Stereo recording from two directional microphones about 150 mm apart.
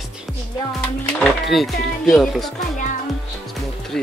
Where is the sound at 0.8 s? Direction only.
5° left (ahead or behind).